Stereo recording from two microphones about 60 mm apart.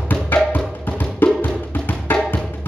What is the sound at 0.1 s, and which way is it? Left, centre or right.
Music, left.